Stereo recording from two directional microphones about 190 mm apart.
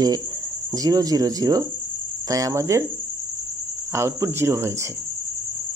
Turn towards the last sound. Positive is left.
turn(degrees=-15)  # may be behind; listen again after turning